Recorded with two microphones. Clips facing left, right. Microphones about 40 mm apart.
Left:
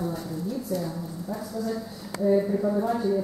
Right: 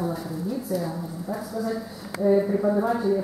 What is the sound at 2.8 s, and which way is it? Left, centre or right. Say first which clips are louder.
Speech: right 2 dB; centre.